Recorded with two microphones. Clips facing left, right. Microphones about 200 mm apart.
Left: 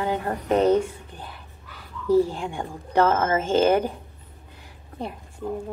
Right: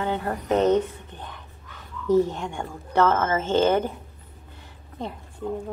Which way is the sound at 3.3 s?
10° left (ahead or behind).